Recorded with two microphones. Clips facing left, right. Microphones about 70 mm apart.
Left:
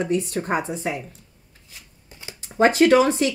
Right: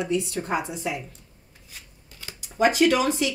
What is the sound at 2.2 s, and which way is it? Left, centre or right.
Speech, left.